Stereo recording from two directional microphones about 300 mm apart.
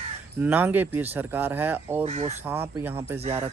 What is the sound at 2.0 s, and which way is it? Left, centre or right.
Speech, right.